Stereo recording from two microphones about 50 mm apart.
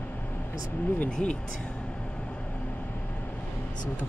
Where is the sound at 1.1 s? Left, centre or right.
Left.